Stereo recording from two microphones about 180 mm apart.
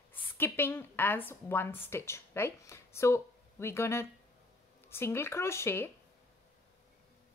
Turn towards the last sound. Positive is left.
turn(degrees=15)  # may be behind; listen again after turning